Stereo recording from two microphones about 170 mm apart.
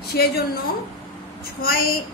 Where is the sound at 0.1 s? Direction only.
70° left (ahead or behind).